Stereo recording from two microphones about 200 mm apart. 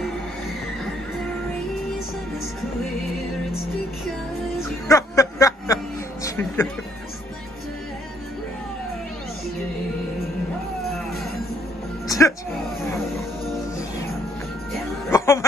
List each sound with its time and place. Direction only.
4.8 s music: 15° left (ahead or behind)
6.2 s speech: 10° left (ahead or behind)
12.1 s music: 15° left (ahead or behind)
15.0 s a sound: 15° left (ahead or behind)